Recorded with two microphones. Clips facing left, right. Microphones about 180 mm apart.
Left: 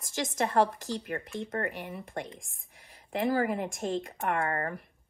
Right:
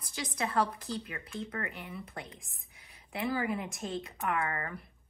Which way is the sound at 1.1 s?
45° left (ahead or behind).